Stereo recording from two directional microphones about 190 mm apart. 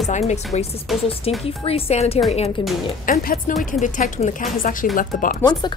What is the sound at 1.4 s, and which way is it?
Speech, 30° left (ahead or behind).